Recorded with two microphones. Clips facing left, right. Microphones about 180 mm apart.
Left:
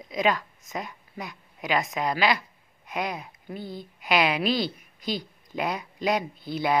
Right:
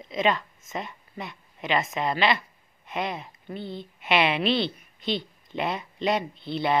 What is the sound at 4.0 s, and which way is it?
A woman's voice, centre (ahead or behind).